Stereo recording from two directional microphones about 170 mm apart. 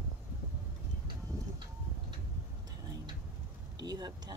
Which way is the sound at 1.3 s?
15° right (ahead or behind).